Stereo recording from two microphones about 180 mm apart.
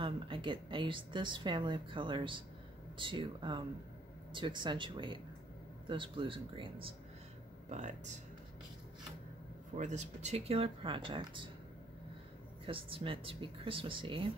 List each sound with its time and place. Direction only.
0.0 s a woman's voice: 30° right (ahead or behind)
7.7 s speech: 40° right (ahead or behind)
9.8 s speech: 40° right (ahead or behind)
12.6 s a woman's voice: 30° right (ahead or behind)